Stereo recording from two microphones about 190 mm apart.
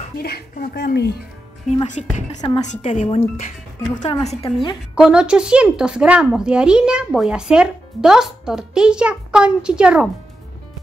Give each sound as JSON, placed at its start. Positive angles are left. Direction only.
{"t": 0.2, "sound": "speech", "side_deg": 55}
{"t": 2.0, "sound": "speech", "side_deg": 35}
{"t": 3.9, "sound": "a woman's voice", "side_deg": 20}
{"t": 4.9, "sound": "speech", "side_deg": -5}